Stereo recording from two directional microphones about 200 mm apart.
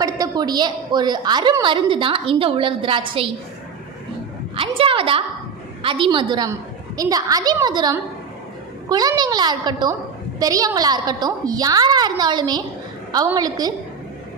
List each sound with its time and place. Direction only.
0.0 s a woman's voice: 20° right (ahead or behind)
4.6 s a woman's voice: 25° right (ahead or behind)